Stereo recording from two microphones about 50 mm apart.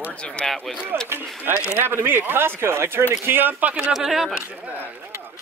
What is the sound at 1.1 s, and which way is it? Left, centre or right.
Speech, right.